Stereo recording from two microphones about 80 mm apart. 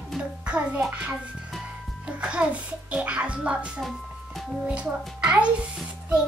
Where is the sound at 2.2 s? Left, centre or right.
Centre.